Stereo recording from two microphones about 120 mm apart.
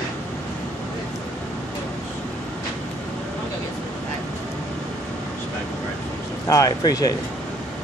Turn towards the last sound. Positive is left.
turn(degrees=30)  # may be behind; listen again after turning